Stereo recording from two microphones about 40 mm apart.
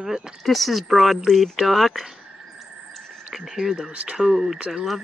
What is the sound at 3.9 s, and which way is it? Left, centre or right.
Speech, right.